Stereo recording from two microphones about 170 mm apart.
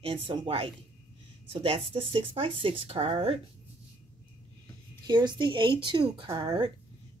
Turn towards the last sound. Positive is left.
turn(degrees=-25)  # may be behind; listen again after turning